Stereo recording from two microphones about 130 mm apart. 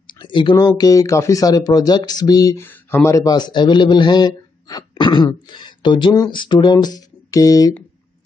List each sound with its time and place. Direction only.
0.0 s speech: 35° left (ahead or behind)
2.6 s a man's voice: 15° left (ahead or behind)